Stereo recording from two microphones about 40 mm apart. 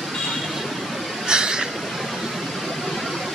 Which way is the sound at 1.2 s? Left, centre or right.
Centre.